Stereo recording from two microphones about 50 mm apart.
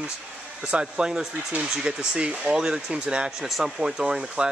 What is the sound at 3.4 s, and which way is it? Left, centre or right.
Speech, centre.